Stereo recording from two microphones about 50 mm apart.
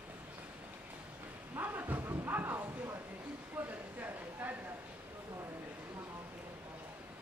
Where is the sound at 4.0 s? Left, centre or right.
Right.